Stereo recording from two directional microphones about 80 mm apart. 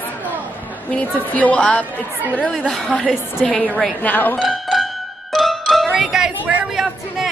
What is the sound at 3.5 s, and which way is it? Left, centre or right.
Speech, centre.